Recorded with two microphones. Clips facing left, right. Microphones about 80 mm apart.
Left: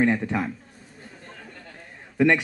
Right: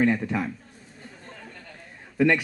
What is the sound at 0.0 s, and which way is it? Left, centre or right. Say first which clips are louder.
Speech: left 1 dB; left.